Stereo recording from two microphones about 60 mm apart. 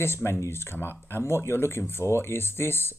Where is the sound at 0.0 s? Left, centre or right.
Left.